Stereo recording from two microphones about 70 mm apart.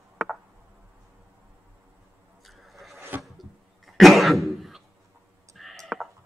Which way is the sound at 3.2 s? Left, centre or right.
Centre.